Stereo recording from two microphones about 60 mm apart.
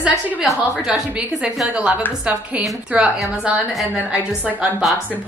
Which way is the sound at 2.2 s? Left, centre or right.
Centre.